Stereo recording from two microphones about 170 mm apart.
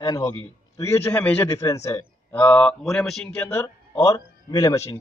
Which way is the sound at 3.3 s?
15° left (ahead or behind).